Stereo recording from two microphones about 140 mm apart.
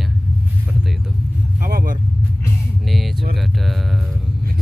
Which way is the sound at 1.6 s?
75° right (ahead or behind).